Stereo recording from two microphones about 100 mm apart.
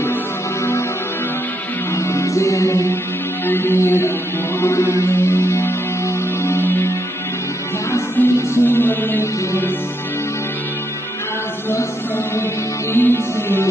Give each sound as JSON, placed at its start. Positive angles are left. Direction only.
{"t": 2.0, "sound": "music", "side_deg": 30}
{"t": 8.2, "sound": "music", "side_deg": 20}
{"t": 12.9, "sound": "music", "side_deg": 25}